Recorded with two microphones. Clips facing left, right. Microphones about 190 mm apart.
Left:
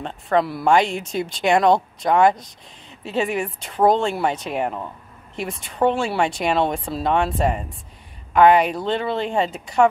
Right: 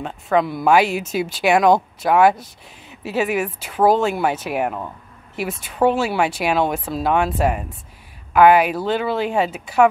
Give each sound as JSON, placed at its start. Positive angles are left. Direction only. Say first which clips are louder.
{"t": 0.0, "sound": "speech", "louder": "right 1 dB", "side_deg": 0}